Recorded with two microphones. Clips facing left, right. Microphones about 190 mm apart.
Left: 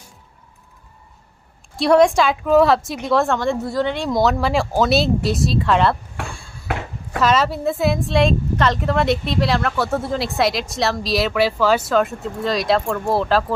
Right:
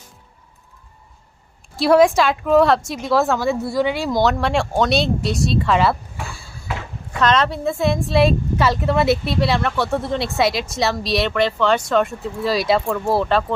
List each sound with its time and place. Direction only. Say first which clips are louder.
1.8 s a woman's voice: even; centre (ahead or behind)
6.7 s ping: left 3 dB; 60° left (ahead or behind)
7.1 s a woman's voice: even; 5° left (ahead or behind)